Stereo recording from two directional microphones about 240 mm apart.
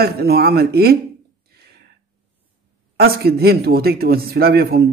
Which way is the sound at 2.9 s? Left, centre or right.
Right.